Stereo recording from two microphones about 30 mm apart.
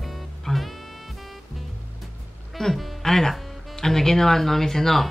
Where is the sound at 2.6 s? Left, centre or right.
Centre.